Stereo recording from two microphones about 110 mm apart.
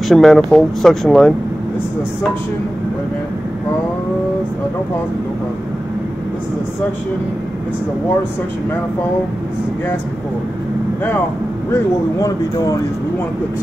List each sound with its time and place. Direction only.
0.1 s speech: 5° left (ahead or behind)
11.7 s speech: 30° left (ahead or behind)